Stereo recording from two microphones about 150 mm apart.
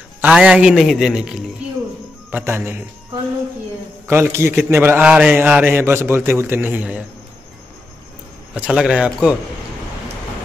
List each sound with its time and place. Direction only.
0.2 s a man's voice: 5° right (ahead or behind)
2.3 s a man's voice: 15° right (ahead or behind)
4.1 s a man's voice: 15° right (ahead or behind)
8.5 s a man's voice: 5° right (ahead or behind)